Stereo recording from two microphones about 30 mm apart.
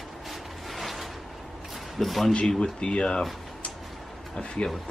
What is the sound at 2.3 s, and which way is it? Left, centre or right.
Speech, left.